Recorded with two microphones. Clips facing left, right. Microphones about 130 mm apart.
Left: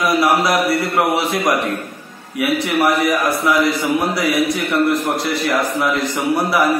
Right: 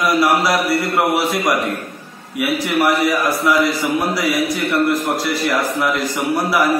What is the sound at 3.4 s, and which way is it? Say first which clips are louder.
A man's voice: even; 25° left (ahead or behind).